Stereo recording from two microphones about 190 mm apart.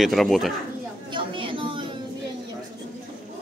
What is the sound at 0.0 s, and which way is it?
Speech, centre (ahead or behind).